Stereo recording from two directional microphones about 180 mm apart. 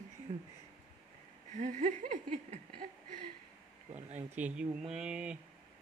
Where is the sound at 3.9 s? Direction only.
40° right (ahead or behind).